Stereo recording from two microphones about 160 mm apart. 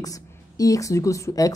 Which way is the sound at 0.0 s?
20° left (ahead or behind).